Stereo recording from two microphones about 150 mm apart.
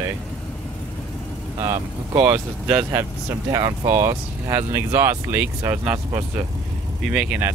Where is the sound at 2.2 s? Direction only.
10° right (ahead or behind).